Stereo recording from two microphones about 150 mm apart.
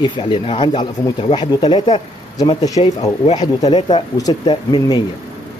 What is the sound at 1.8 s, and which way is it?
Speech, 40° left (ahead or behind).